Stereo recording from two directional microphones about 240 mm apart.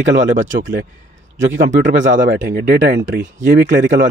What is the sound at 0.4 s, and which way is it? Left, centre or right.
Speech, right.